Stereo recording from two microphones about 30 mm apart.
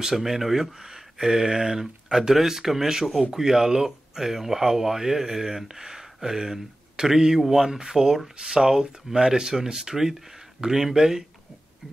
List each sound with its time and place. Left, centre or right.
0.1 s speech: centre